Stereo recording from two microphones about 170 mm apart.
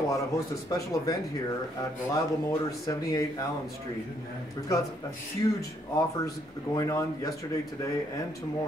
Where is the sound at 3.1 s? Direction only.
20° left (ahead or behind).